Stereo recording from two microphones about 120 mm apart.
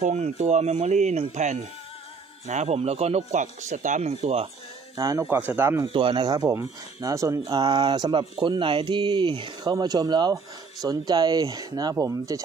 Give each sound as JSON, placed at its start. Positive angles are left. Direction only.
{"t": 0.0, "sound": "speech", "side_deg": -75}
{"t": 2.4, "sound": "speech", "side_deg": -65}
{"t": 4.1, "sound": "speech", "side_deg": -55}
{"t": 4.9, "sound": "speech", "side_deg": -25}
{"t": 5.9, "sound": "speech", "side_deg": -45}
{"t": 6.2, "sound": "speech", "side_deg": -35}
{"t": 7.4, "sound": "speech", "side_deg": -40}